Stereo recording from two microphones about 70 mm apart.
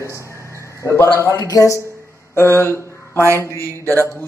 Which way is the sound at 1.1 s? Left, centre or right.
Left.